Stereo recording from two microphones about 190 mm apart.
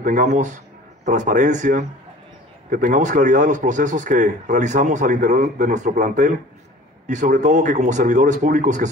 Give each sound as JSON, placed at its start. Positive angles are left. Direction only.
{"t": 0.0, "sound": "a man's voice", "side_deg": -45}